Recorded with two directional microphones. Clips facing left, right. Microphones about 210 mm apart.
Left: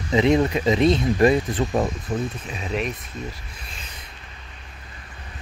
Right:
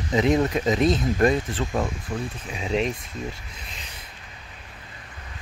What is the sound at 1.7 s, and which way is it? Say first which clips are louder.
Speech: left 2 dB; 20° left (ahead or behind).